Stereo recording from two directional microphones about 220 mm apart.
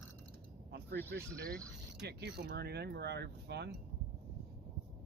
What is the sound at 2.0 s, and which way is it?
Speech, 50° right (ahead or behind).